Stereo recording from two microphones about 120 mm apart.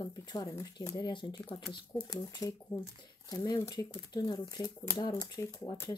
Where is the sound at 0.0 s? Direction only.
35° left (ahead or behind).